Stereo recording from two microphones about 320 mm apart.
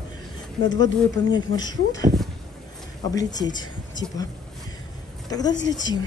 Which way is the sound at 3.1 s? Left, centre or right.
Centre.